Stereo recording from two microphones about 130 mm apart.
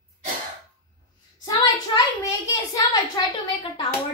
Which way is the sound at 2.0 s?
25° left (ahead or behind).